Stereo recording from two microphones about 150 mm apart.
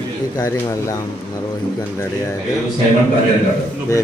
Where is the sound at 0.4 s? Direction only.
20° left (ahead or behind).